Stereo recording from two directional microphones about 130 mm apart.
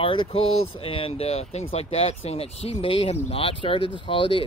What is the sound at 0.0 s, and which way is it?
Speech, 45° left (ahead or behind).